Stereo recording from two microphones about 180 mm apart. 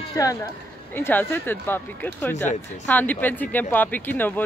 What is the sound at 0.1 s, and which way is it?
Speech, 20° left (ahead or behind).